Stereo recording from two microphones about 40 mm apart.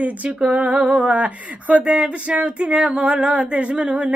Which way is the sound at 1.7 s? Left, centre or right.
Right.